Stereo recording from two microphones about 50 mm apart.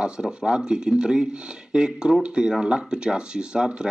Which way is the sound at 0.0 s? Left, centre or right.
Centre.